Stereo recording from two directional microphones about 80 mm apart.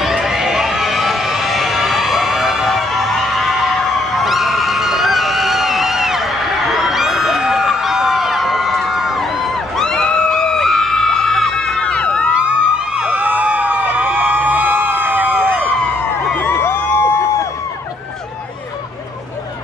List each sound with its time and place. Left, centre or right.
0.0 s run: centre
6.9 s a sound: centre
9.8 s crowd: centre
11.8 s crowd: centre
12.4 s a sound: centre
16.3 s crowd: left